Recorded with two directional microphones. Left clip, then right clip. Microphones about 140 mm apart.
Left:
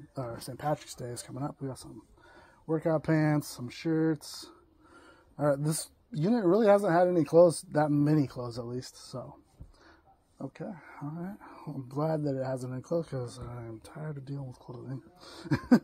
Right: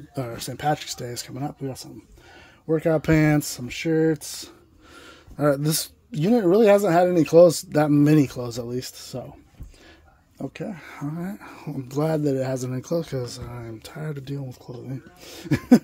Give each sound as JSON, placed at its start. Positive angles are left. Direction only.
{"t": 0.1, "sound": "speech", "side_deg": -25}
{"t": 2.7, "sound": "speech", "side_deg": -20}
{"t": 10.4, "sound": "speech", "side_deg": -25}
{"t": 10.7, "sound": "speech", "side_deg": -35}